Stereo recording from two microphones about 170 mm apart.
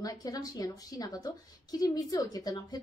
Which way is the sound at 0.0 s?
20° left (ahead or behind).